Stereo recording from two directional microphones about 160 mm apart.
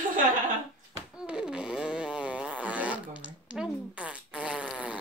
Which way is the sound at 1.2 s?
5° right (ahead or behind).